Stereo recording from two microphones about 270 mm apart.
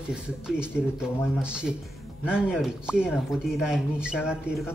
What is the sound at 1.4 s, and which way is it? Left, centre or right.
Speech, centre.